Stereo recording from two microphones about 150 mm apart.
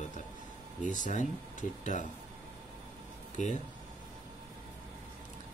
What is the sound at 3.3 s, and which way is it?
Speech, 55° left (ahead or behind).